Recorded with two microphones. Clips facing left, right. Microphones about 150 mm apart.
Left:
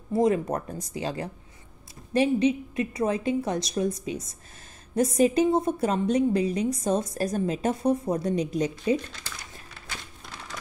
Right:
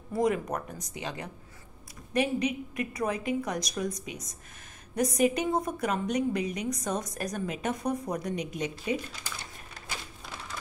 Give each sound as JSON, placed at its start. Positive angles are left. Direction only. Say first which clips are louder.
{"t": 0.1, "sound": "a woman's voice", "louder": "left 4 dB", "side_deg": 25}